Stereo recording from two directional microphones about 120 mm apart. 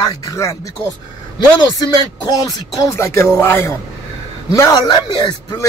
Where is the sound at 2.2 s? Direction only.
30° left (ahead or behind).